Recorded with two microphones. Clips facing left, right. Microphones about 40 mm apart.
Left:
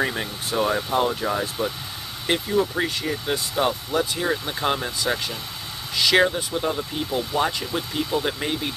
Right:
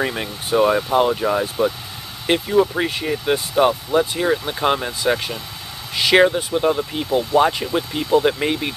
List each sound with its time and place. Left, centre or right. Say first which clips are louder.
0.0 s speech: right 2 dB; centre